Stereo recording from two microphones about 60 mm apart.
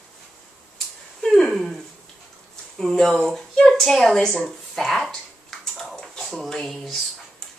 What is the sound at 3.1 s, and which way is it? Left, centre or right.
Speech, centre.